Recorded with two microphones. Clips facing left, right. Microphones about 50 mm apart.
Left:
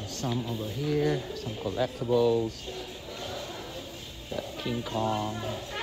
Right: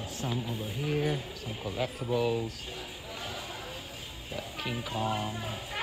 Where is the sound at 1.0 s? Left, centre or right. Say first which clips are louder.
Left 4 dB; centre.